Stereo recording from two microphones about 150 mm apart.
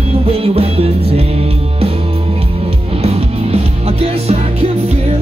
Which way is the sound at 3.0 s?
40° right (ahead or behind).